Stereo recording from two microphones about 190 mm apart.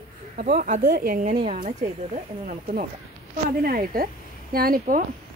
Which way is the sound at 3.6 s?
50° right (ahead or behind).